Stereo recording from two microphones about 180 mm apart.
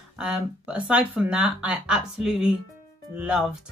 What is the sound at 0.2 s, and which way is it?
Speech, 5° right (ahead or behind).